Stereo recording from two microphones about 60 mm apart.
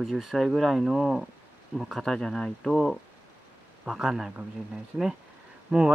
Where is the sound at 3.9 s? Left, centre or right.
Centre.